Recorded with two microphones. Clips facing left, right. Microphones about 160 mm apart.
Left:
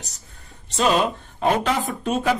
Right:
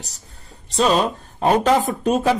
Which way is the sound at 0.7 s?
40° right (ahead or behind).